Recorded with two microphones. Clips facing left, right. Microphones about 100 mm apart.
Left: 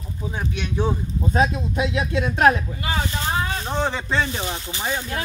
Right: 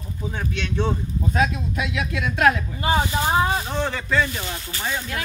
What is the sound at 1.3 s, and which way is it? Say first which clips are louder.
Speech: left 2 dB; 30° left (ahead or behind).